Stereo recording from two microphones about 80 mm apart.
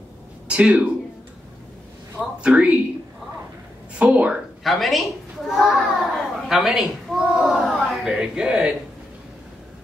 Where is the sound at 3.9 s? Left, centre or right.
Centre.